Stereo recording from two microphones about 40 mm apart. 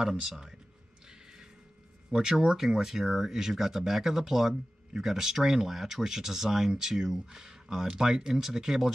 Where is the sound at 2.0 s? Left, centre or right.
Centre.